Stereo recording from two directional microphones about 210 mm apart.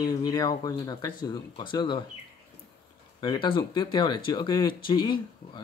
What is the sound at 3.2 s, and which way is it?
Speech, 20° left (ahead or behind).